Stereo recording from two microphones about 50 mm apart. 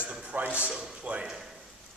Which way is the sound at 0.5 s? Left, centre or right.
Right.